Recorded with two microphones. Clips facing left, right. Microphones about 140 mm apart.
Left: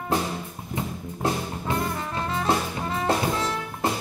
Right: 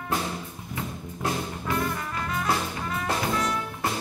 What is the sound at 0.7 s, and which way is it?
Music, 25° left (ahead or behind).